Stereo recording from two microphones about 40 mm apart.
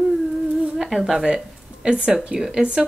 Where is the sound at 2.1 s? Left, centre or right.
Centre.